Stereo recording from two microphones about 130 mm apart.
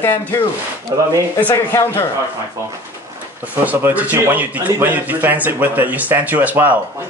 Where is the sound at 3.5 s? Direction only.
15° right (ahead or behind).